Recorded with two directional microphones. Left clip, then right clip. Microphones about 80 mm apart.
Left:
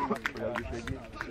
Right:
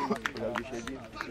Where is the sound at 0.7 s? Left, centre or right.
Centre.